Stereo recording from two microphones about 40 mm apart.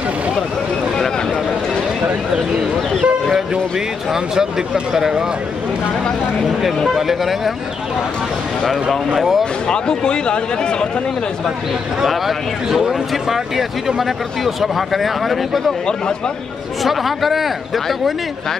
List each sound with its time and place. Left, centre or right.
4.1 s speech: centre
7.0 s speech: centre
9.1 s speech: centre
9.4 s speech: left
12.6 s speech: centre
16.8 s speech: centre